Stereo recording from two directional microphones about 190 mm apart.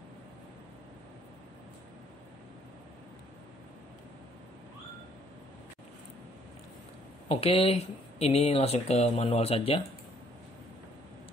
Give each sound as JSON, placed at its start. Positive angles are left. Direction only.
{"t": 7.2, "sound": "speech", "side_deg": 30}